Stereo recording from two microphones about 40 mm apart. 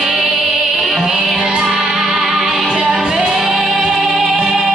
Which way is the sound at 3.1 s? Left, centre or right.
Centre.